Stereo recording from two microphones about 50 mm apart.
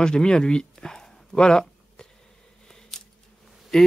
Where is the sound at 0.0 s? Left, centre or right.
Centre.